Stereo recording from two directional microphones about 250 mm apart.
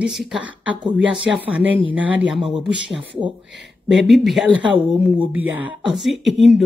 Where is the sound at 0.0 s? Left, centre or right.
Centre.